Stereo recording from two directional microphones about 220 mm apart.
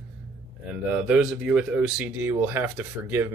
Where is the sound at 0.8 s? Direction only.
5° right (ahead or behind).